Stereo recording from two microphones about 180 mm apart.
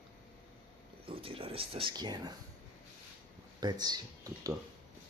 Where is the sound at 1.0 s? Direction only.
30° right (ahead or behind).